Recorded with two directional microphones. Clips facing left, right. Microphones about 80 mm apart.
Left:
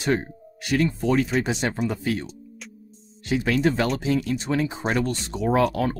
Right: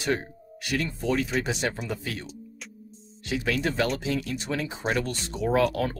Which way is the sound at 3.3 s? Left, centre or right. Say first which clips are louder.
Left 6 dB; left.